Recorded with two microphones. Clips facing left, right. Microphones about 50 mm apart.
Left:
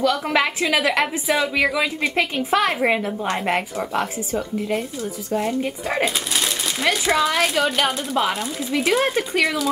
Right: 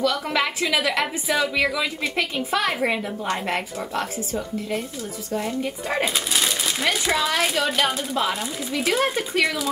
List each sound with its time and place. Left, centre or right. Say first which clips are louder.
0.0 s a woman's voice: left 3 dB; left
1.2 s speech: even; centre
1.8 s a woman's voice: left 4 dB; left
5.3 s a child's voice: left 3 dB; centre